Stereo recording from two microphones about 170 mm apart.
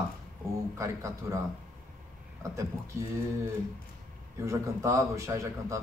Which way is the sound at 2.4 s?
15° right (ahead or behind).